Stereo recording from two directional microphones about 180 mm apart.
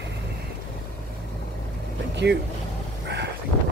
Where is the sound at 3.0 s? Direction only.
70° right (ahead or behind).